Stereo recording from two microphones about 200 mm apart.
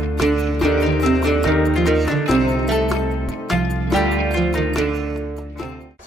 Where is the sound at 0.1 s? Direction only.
Centre (ahead or behind).